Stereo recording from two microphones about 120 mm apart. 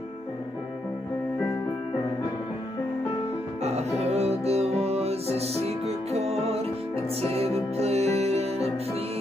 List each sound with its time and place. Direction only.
3.6 s music: 65° right (ahead or behind)